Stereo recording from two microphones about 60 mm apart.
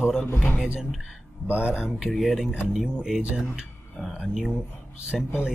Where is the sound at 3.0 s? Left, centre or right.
Centre.